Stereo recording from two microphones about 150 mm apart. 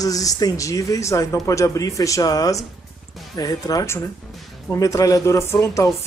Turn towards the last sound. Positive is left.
turn(degrees=20)  # may be behind; listen again after turning